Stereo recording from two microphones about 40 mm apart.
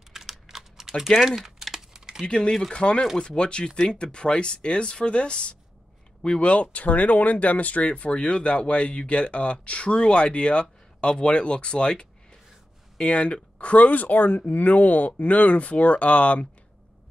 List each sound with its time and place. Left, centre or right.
0.1 s typing: centre
2.2 s speech: left